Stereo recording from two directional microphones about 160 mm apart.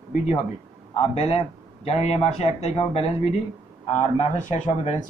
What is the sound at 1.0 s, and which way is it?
A man's voice, 40° left (ahead or behind).